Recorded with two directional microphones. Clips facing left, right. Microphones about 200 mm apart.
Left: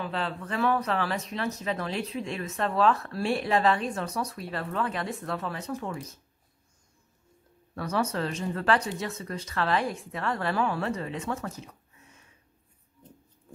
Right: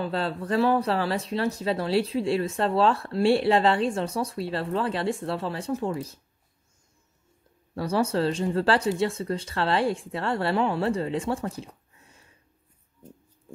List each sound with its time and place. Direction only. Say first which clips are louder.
0.0 s speech: right 4 dB; 35° right (ahead or behind)
7.7 s speech: right 4 dB; 30° right (ahead or behind)